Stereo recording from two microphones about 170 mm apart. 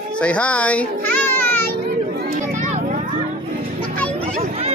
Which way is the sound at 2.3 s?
50° right (ahead or behind).